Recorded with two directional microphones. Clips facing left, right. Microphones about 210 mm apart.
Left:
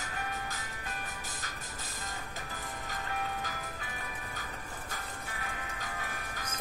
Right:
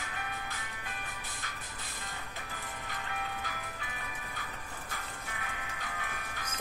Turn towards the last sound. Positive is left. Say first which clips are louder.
# left 1 dB
turn(degrees=40)  # may be behind; listen again after turning